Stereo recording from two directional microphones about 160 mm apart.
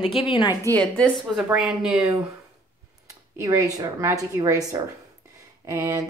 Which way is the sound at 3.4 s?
20° right (ahead or behind).